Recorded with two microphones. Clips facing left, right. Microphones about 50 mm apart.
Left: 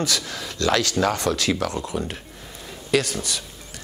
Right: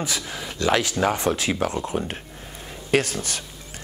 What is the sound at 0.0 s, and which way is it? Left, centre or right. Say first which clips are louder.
Speech: left 2 dB; centre.